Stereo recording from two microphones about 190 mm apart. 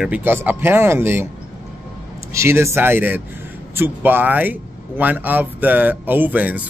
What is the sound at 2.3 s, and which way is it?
A man's voice, 15° right (ahead or behind).